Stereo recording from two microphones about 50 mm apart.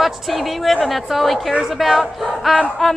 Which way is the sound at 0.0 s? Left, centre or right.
Centre.